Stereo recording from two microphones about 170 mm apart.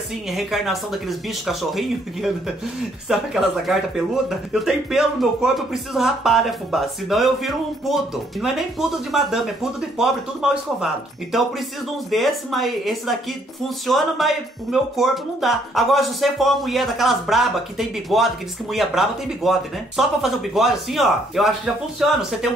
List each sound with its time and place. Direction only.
0.3 s speech: centre (ahead or behind)